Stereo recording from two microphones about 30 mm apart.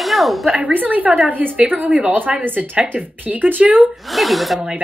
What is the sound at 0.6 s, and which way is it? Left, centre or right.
Speech, right.